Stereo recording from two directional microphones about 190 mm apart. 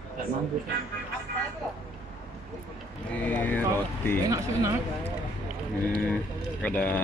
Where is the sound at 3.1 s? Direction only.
10° left (ahead or behind).